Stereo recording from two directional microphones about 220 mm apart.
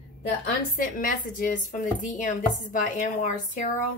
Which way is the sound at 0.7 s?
40° left (ahead or behind).